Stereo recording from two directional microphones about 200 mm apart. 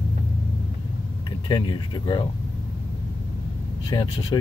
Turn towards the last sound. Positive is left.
turn(degrees=25)  # may be behind; listen again after turning